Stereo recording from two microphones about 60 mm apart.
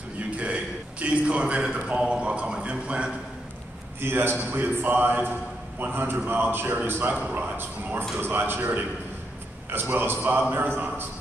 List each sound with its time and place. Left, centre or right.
0.4 s a man's voice: right
4.0 s a man's voice: right